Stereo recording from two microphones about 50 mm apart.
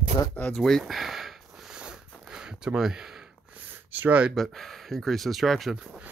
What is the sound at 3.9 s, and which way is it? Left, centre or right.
Speech, right.